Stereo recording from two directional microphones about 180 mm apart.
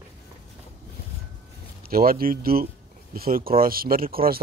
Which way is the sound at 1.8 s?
55° right (ahead or behind).